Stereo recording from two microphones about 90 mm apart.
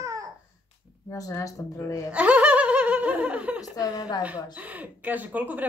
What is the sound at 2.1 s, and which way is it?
Speech, 15° right (ahead or behind).